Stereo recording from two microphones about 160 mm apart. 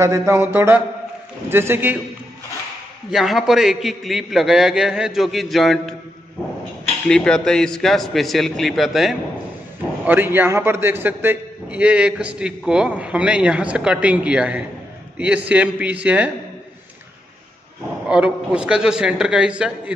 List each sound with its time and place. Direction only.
0.0 s a man's voice: 20° right (ahead or behind)
3.1 s a man's voice: centre (ahead or behind)
7.1 s a man's voice: 5° left (ahead or behind)
10.0 s a man's voice: 10° right (ahead or behind)
18.0 s a man's voice: 5° right (ahead or behind)